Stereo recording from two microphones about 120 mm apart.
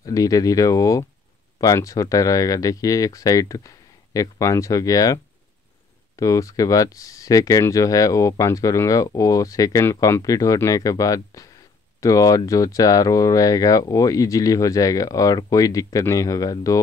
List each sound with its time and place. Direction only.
0.0 s speech: 30° left (ahead or behind)